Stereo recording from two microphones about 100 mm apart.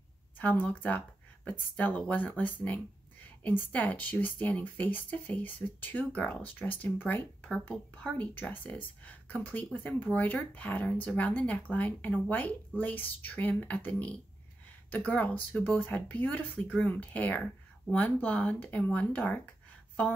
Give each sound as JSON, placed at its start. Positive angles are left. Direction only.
{"t": 0.4, "sound": "speech", "side_deg": 15}
{"t": 7.4, "sound": "speech", "side_deg": 5}